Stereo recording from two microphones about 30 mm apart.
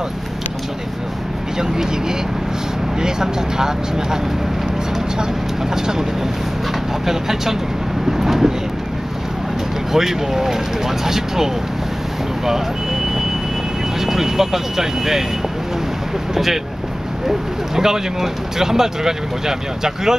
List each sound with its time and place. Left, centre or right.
1.6 s speech: centre
7.1 s speech: centre
8.2 s vehicle: centre
9.9 s speech: centre
13.9 s speech: centre
17.3 s speech: centre